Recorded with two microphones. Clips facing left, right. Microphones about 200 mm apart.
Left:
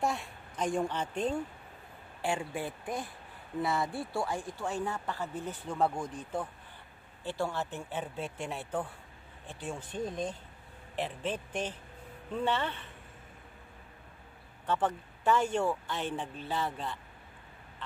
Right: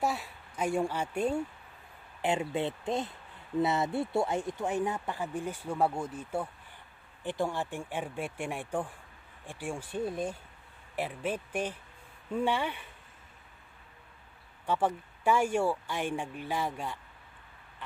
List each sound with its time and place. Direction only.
0.0 s a woman's voice: 5° right (ahead or behind)
2.2 s speech: 20° right (ahead or behind)
14.7 s speech: 10° right (ahead or behind)